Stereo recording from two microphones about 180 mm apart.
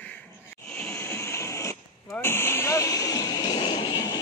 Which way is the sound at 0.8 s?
15° left (ahead or behind).